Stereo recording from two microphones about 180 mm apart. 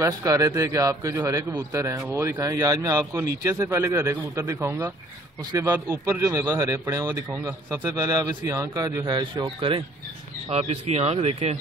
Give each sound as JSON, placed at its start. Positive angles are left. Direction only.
{"t": 0.0, "sound": "speech", "side_deg": -20}